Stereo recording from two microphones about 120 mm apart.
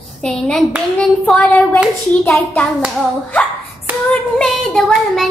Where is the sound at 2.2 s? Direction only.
20° left (ahead or behind).